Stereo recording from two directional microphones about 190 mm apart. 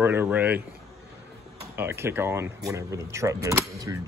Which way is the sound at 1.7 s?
10° right (ahead or behind).